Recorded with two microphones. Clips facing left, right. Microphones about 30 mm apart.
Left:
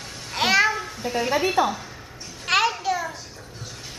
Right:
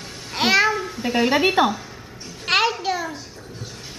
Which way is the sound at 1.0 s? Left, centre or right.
Right.